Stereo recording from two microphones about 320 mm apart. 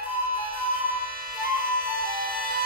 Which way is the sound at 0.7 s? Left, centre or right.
Right.